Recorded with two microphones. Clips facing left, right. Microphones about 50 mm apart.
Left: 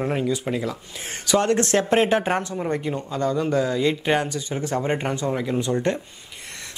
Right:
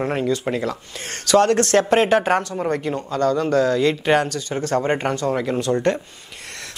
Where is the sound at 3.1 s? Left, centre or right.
Centre.